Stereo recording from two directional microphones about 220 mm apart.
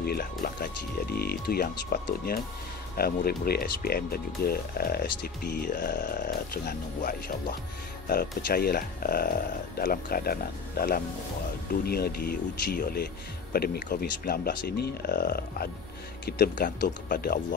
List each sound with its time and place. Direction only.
0.0 s speech: 45° left (ahead or behind)